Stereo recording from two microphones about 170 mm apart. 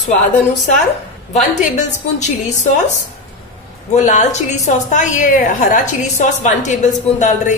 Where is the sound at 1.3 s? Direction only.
45° left (ahead or behind).